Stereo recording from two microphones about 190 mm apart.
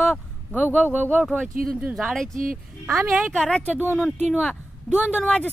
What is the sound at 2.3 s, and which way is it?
Speech, 45° right (ahead or behind).